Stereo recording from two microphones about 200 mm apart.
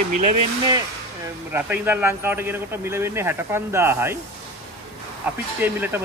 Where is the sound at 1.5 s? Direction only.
10° right (ahead or behind).